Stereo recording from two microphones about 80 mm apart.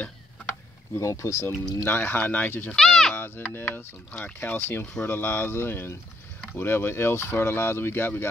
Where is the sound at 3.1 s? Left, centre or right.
Left.